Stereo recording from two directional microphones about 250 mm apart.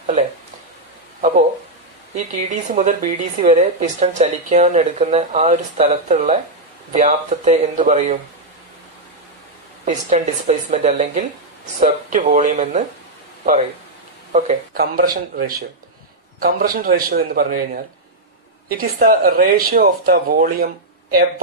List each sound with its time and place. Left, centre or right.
2.1 s a woman's voice: right
9.8 s a woman's voice: right
14.3 s speech: right
18.7 s speech: right